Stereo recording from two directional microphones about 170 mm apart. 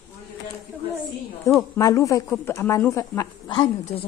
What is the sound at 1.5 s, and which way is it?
Speech, 20° left (ahead or behind).